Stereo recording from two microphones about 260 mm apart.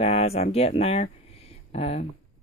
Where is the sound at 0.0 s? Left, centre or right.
Left.